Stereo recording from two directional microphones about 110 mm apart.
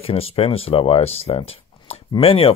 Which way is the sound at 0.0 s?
60° left (ahead or behind).